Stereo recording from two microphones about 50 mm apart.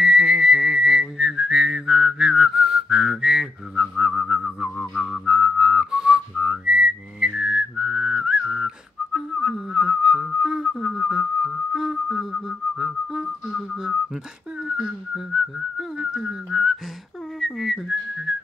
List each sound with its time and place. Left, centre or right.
0.0 s whistling: centre
7.7 s whistling: centre
11.7 s a sound: centre
12.7 s whistling: centre
16.0 s whistling: centre